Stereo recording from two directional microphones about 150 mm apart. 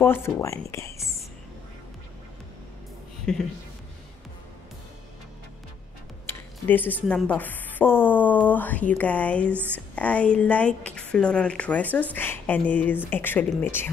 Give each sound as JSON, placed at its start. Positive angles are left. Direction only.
{"t": 0.0, "sound": "speech", "side_deg": 15}
{"t": 3.3, "sound": "speech", "side_deg": 5}
{"t": 6.2, "sound": "tick-tock", "side_deg": 10}
{"t": 7.1, "sound": "speech", "side_deg": 10}
{"t": 9.5, "sound": "speech", "side_deg": -15}
{"t": 9.9, "sound": "speech", "side_deg": 10}